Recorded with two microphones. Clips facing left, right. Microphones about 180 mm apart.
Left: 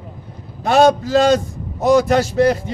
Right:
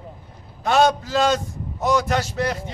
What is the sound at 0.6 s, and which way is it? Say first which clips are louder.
A man's voice: left 5 dB; 40° left (ahead or behind).